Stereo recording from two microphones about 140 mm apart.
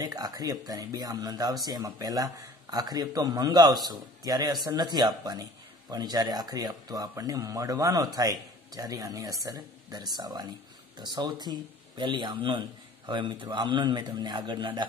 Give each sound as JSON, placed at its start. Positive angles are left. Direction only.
{"t": 0.0, "sound": "a man's voice", "side_deg": -30}